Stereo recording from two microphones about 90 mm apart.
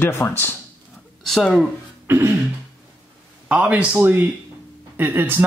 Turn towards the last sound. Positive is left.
turn(degrees=-20)  # may be behind; listen again after turning